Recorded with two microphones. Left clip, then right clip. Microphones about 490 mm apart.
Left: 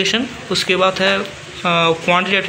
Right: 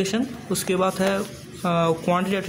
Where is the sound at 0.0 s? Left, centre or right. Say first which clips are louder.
Left 8 dB; right.